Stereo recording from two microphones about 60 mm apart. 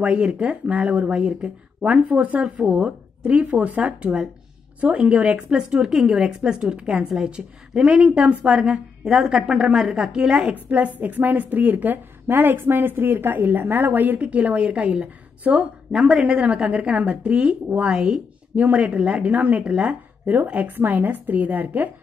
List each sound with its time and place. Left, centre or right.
0.0 s a woman's voice: right
10.4 s a woman's voice: right